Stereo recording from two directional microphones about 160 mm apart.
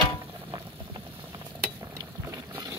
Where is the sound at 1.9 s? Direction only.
20° right (ahead or behind).